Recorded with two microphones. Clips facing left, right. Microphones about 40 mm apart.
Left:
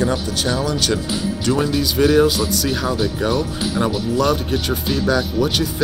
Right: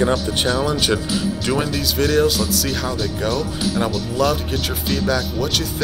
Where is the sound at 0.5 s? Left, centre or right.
Centre.